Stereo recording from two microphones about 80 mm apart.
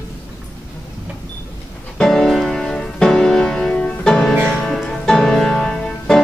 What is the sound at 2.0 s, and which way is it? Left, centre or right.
Music, centre.